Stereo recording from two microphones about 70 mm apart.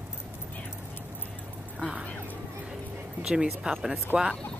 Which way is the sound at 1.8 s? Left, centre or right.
Centre.